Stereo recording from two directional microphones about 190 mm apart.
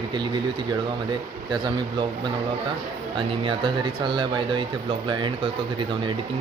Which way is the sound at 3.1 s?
25° right (ahead or behind).